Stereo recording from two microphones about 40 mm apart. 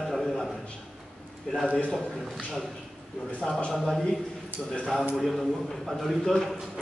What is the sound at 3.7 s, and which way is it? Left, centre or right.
Speech, centre.